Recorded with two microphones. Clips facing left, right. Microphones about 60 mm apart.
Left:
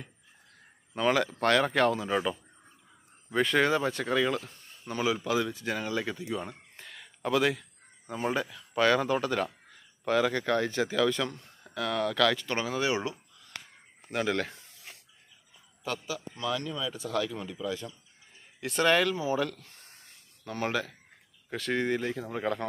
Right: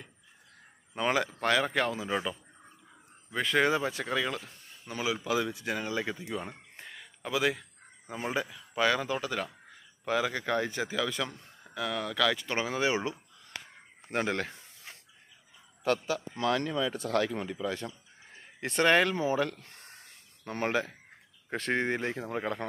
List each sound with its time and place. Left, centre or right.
0.9 s speech: centre
3.6 s speech: centre
6.2 s a sound: centre
7.2 s speech: centre
12.4 s speech: centre
15.8 s speech: right
19.6 s a sound: right
20.4 s speech: right
22.3 s speech: centre